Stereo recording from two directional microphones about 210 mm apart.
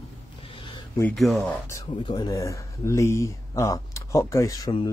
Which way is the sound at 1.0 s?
5° left (ahead or behind).